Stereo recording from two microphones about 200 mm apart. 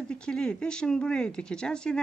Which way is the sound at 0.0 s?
5° left (ahead or behind).